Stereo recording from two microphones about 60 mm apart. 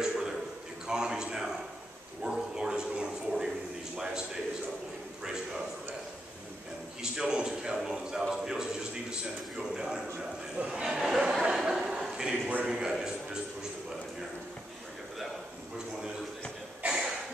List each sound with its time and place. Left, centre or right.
0.0 s a sound: centre
0.8 s a man's voice: centre
2.2 s a sound: centre
3.9 s a man's voice: centre
5.2 s a man's voice: centre
7.0 s a man's voice: centre
10.1 s speech: right
10.8 s a man's voice: centre
12.9 s a sound: centre